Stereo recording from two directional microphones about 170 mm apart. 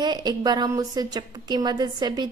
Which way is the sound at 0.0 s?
25° right (ahead or behind).